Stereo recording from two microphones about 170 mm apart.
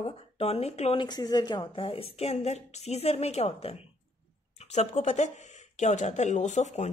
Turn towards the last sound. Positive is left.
turn(degrees=45)  # may be behind; listen again after turning